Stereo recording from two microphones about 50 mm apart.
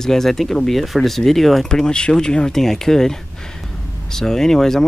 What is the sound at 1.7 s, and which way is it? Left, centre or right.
Speech, centre.